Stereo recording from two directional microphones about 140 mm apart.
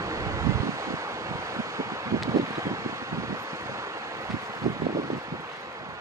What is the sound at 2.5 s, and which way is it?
Wind, 20° right (ahead or behind).